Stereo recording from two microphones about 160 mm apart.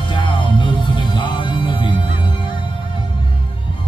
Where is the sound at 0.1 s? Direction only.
30° left (ahead or behind).